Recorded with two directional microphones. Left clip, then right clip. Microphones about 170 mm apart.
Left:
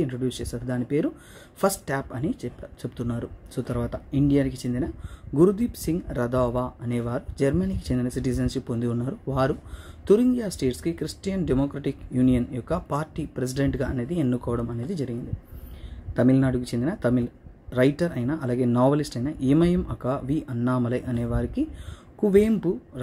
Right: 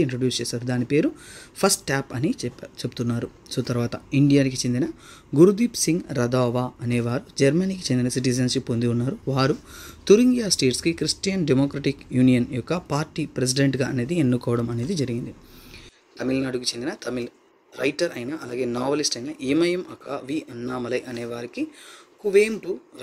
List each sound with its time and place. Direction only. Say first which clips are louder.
0.0 s speech: right 5 dB; 15° right (ahead or behind)
16.3 s speech: right 1 dB; 20° right (ahead or behind)